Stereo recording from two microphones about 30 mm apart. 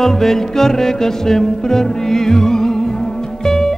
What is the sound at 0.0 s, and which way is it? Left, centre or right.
Music, centre.